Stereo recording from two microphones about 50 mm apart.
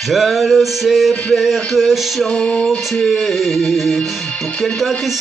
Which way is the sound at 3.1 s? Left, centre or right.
Centre.